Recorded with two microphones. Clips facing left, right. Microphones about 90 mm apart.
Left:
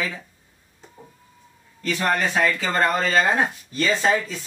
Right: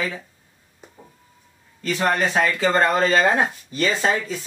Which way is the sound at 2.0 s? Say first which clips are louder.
Right 1 dB; 15° right (ahead or behind).